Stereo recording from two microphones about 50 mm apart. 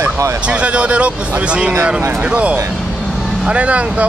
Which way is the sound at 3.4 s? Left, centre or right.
Right.